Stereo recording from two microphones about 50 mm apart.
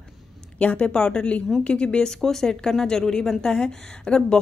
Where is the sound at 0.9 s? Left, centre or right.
Centre.